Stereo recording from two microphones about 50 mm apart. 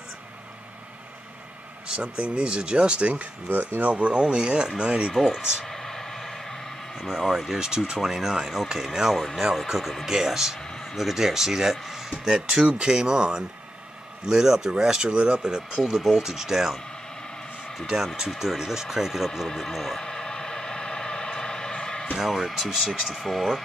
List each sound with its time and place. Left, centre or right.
1.9 s speech: centre
3.4 s speech: right; by 5.1 s centre
5.7 s vehicle: centre
7.0 s speech: centre
7.6 s speech: centre
17.8 s a sound: centre
22.1 s speech: centre